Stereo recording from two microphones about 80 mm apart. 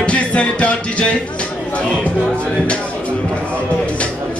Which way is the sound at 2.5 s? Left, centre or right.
Centre.